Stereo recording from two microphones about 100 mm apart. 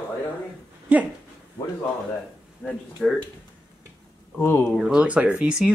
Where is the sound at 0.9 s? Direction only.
15° right (ahead or behind).